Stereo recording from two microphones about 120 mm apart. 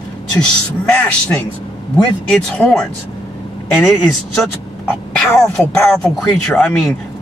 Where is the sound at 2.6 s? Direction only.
10° left (ahead or behind).